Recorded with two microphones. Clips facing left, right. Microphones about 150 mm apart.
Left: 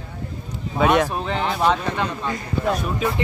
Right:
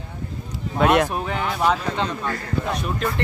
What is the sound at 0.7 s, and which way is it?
Speech, centre (ahead or behind).